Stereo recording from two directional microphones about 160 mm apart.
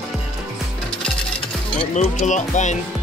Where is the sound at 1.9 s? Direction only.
50° left (ahead or behind).